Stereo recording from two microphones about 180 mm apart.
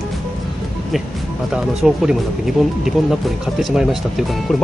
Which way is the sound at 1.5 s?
5° right (ahead or behind).